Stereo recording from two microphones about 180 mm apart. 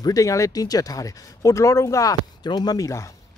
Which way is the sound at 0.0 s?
20° left (ahead or behind).